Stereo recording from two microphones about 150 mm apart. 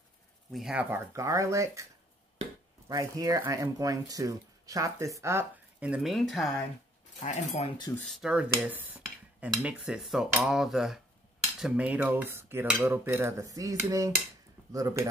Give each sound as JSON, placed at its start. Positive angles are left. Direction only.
{"t": 0.5, "sound": "speech", "side_deg": -5}
{"t": 2.9, "sound": "speech", "side_deg": -20}
{"t": 7.2, "sound": "speech", "side_deg": 50}
{"t": 7.9, "sound": "speech", "side_deg": 0}